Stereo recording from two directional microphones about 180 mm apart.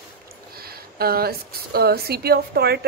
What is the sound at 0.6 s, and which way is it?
Speech, 60° right (ahead or behind).